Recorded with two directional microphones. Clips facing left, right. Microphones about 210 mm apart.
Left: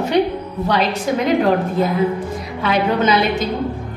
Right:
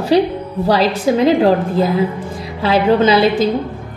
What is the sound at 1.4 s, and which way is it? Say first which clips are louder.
A woman's voice: right 3 dB; 35° right (ahead or behind).